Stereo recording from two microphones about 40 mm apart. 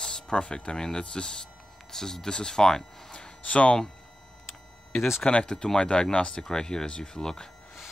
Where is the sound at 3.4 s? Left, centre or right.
Left.